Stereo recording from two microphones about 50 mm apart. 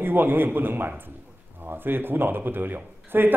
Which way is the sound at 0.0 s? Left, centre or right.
Right.